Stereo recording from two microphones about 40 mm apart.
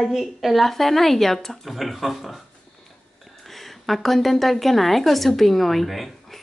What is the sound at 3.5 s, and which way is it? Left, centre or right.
A woman's voice, centre.